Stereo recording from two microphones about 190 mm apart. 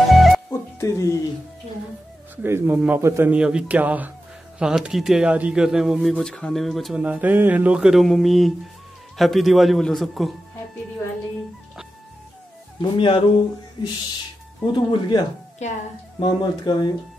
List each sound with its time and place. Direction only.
0.0 s music: centre (ahead or behind)
0.5 s music: 15° left (ahead or behind)
2.3 s a man's voice: 10° right (ahead or behind)
12.8 s speech: 25° left (ahead or behind)
15.6 s a woman's voice: 35° left (ahead or behind)
16.2 s speech: 25° left (ahead or behind)